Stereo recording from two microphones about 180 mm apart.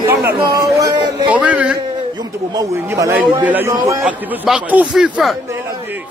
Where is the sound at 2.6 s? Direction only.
15° right (ahead or behind).